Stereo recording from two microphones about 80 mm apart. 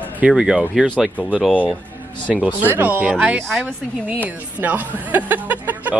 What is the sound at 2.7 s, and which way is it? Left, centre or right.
Speech, right.